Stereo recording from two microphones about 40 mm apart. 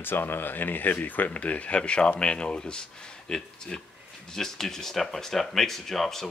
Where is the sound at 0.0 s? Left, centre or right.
Left.